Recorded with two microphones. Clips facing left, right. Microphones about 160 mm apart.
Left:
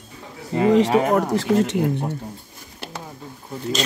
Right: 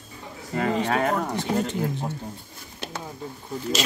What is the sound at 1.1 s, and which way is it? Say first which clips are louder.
Speech: left 7 dB; 90° left.